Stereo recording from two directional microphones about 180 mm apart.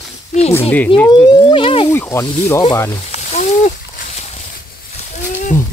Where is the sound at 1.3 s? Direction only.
30° left (ahead or behind).